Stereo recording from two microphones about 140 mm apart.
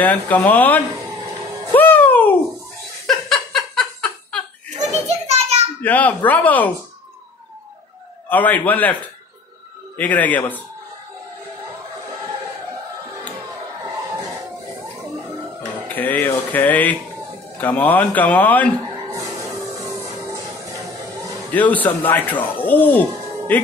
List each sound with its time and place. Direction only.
0.0 s speech: 10° left (ahead or behind)
1.7 s music: 15° left (ahead or behind)
3.1 s giggle: centre (ahead or behind)
4.6 s children playing: 55° right (ahead or behind)
5.8 s speech: 10° left (ahead or behind)
8.3 s speech: 10° left (ahead or behind)
15.9 s speech: 10° left (ahead or behind)
19.0 s music: 25° right (ahead or behind)
21.5 s speech: 10° left (ahead or behind)